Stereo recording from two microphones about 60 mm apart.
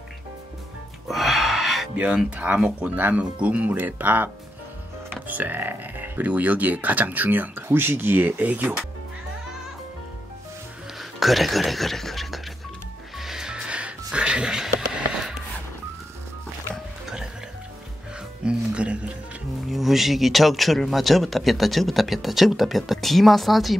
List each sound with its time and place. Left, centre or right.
1.0 s music: centre
2.0 s speech: centre
11.0 s speech: centre
13.2 s music: centre
18.4 s music: centre
19.7 s a man's voice: centre